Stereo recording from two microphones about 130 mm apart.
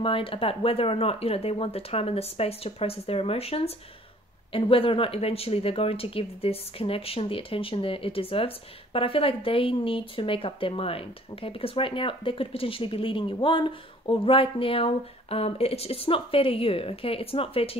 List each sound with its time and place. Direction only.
0.0 s speech: 45° left (ahead or behind)